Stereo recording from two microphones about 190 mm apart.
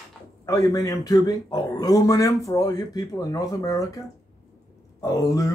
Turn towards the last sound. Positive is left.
turn(degrees=15)  # may be behind; listen again after turning